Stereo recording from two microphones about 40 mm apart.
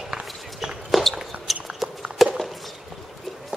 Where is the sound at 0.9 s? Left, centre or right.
Centre.